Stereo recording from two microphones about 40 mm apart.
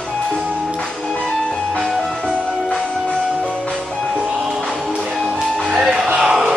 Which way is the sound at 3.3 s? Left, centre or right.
Left.